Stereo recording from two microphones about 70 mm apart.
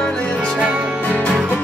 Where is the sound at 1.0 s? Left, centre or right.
Left.